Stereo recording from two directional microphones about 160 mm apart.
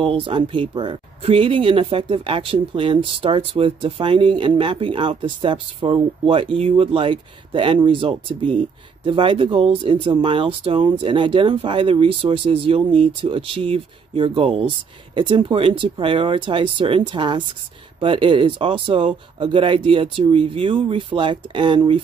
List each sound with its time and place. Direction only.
0.0 s speech: 35° right (ahead or behind)